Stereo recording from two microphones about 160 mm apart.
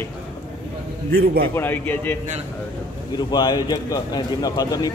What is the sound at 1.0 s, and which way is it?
Speech, 80° right.